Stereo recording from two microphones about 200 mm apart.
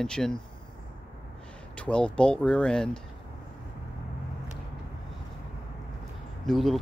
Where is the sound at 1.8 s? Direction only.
5° left (ahead or behind).